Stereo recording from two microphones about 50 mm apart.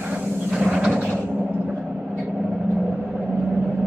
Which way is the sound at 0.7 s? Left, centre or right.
Right.